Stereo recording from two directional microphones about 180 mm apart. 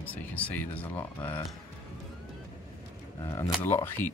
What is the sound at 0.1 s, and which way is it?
Speech, 10° left (ahead or behind).